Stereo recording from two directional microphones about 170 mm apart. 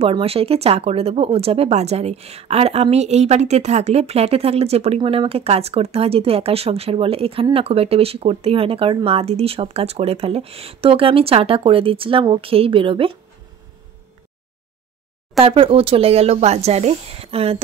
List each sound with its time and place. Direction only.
0.0 s speech: 35° right (ahead or behind)
15.4 s speech: 35° right (ahead or behind)